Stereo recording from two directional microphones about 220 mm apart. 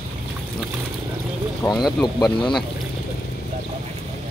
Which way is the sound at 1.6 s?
15° left (ahead or behind).